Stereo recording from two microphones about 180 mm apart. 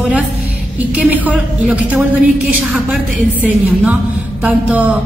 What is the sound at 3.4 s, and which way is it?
A woman's voice, 10° right (ahead or behind).